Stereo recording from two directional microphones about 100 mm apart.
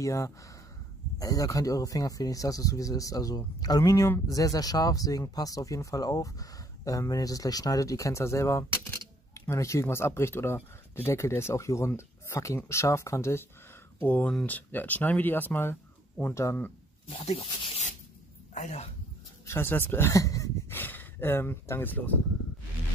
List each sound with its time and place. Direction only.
0.0 s speech: 30° left (ahead or behind)
17.1 s speech: 80° left
19.4 s speech: 25° left (ahead or behind)
20.7 s a sound: 20° left (ahead or behind)